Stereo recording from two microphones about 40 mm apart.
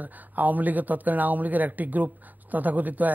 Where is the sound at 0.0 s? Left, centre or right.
Right.